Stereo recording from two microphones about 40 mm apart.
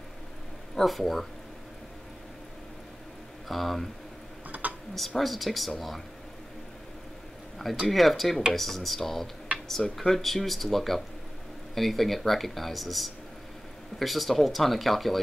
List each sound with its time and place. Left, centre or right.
0.7 s speech: centre
3.4 s speech: centre
4.5 s dishes: right
4.9 s speech: centre
7.5 s speech: centre